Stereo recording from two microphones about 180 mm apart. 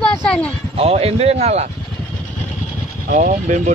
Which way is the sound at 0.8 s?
35° right (ahead or behind).